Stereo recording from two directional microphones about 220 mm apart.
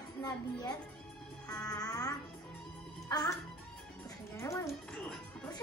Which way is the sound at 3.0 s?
15° left (ahead or behind).